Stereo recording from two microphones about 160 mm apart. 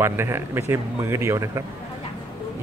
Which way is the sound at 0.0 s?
15° right (ahead or behind).